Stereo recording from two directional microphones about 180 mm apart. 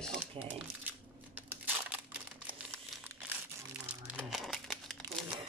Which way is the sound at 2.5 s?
10° right (ahead or behind).